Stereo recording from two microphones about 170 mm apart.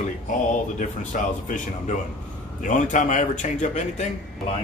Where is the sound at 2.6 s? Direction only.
45° left (ahead or behind).